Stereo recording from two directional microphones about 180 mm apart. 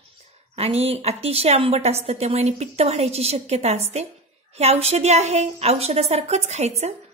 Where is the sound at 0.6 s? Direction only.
35° right (ahead or behind).